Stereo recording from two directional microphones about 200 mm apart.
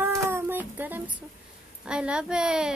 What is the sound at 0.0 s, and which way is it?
Child singing, 10° right (ahead or behind).